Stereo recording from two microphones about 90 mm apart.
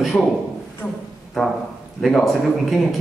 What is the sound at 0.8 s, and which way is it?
Speech, 20° left (ahead or behind).